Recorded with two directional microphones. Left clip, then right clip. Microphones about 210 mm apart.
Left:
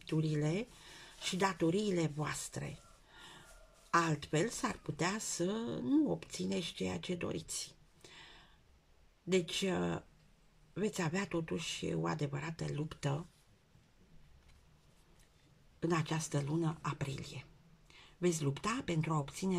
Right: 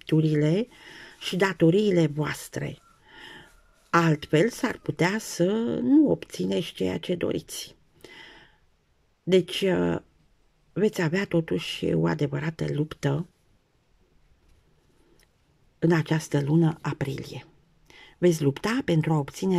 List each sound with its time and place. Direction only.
0.0 s speech: 40° right (ahead or behind)
15.8 s speech: 40° right (ahead or behind)